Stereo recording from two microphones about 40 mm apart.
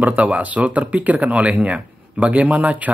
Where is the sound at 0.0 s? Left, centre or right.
Right.